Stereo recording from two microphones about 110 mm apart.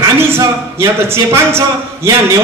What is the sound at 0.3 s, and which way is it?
A man's voice, 25° right (ahead or behind).